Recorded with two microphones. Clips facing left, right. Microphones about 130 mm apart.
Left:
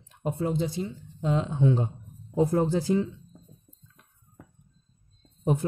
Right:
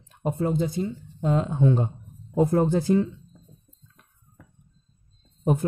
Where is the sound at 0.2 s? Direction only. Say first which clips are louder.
Right 3 dB; 50° right (ahead or behind).